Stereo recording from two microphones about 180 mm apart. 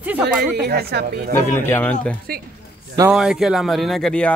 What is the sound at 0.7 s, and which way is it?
Speech, 60° right (ahead or behind).